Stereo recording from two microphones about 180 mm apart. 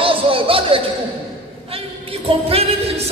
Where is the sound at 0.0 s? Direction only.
30° right (ahead or behind).